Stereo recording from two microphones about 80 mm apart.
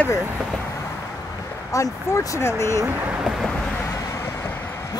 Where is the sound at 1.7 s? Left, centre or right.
Left.